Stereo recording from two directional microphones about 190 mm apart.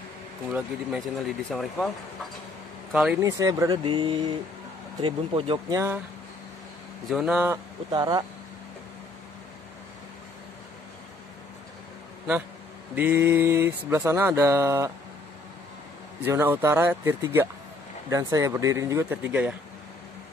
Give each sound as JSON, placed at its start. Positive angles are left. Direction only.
{"t": 0.5, "sound": "speech", "side_deg": 0}
{"t": 2.9, "sound": "speech", "side_deg": -5}
{"t": 3.2, "sound": "speech", "side_deg": -15}
{"t": 7.1, "sound": "mantra", "side_deg": -5}
{"t": 12.9, "sound": "mantra", "side_deg": -10}
{"t": 16.3, "sound": "mantra", "side_deg": -15}